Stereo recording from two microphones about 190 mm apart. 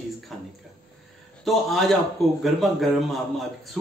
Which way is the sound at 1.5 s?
Centre (ahead or behind).